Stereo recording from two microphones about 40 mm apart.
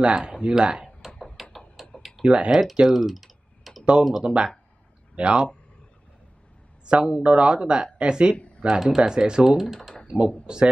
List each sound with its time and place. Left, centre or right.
0.0 s speech: right
1.3 s a sound: centre
2.2 s speech: right
2.5 s typing: centre
4.2 s speech: right
6.9 s speech: right